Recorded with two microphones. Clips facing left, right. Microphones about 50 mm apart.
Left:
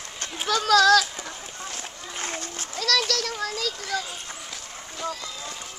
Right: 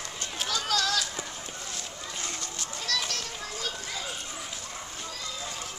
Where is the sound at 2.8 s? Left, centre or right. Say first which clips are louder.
Left 8 dB; left.